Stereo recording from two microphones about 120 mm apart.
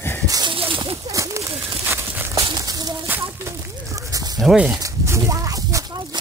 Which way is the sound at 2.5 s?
30° right (ahead or behind).